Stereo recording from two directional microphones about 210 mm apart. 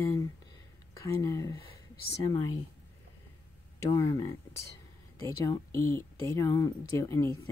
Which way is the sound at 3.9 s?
15° left (ahead or behind).